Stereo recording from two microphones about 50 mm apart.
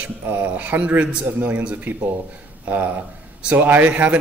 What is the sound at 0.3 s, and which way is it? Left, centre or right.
Speech, right.